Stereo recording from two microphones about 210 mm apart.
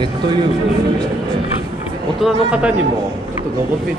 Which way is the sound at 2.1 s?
5° right (ahead or behind).